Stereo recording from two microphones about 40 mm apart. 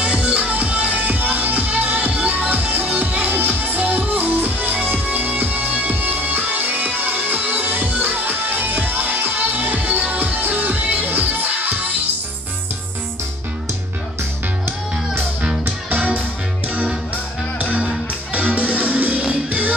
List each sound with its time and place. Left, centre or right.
0.0 s music: right
15.6 s music: right
18.3 s music: right